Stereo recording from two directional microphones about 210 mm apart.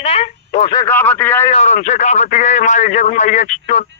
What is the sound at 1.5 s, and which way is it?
A man's voice, 30° left (ahead or behind).